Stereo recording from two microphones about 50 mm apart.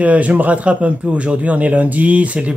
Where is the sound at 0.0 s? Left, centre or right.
Right.